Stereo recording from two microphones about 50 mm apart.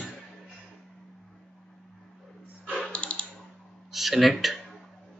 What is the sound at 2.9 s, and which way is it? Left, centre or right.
Typing, left.